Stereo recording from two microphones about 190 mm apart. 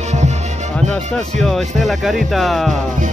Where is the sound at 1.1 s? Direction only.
Centre (ahead or behind).